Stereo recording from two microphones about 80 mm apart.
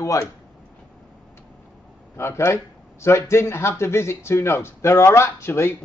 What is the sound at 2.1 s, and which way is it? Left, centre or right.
Speech, left.